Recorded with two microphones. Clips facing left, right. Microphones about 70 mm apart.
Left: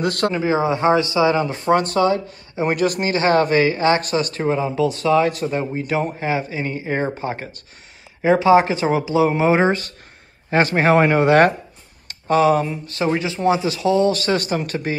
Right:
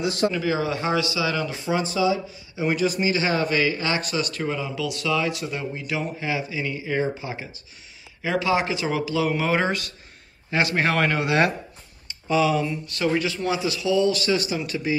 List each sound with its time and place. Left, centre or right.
0.0 s speech: left
0.3 s a man's voice: left
1.5 s a man's voice: left
8.2 s a man's voice: left
12.6 s a man's voice: left